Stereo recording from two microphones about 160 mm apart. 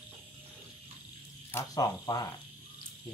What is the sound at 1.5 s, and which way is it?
Speech, 20° left (ahead or behind).